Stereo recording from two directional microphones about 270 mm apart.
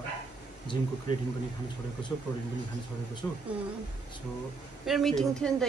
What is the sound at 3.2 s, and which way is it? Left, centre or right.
Speech, centre.